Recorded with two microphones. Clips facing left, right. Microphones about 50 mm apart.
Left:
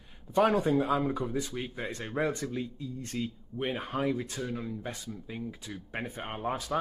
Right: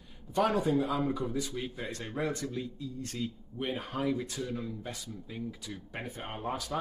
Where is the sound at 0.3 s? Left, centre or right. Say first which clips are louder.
Left 3 dB; left.